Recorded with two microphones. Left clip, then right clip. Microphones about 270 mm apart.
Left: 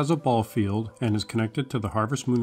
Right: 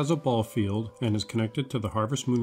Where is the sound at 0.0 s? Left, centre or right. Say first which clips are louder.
Left 3 dB; centre.